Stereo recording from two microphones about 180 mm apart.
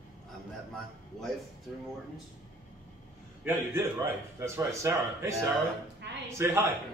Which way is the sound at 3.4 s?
15° right (ahead or behind).